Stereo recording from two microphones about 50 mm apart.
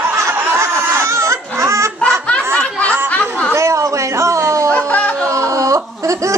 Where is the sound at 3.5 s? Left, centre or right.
Right.